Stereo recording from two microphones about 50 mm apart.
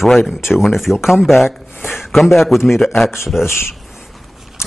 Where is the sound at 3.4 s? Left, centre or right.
Left.